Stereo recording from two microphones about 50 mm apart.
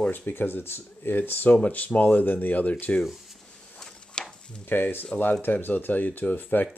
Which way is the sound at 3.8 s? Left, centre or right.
Centre.